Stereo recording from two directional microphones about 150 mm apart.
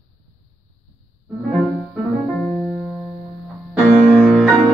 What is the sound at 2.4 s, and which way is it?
Music, 10° left (ahead or behind).